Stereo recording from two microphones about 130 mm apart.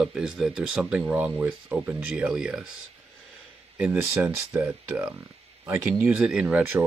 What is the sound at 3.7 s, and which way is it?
Speech, 10° right (ahead or behind).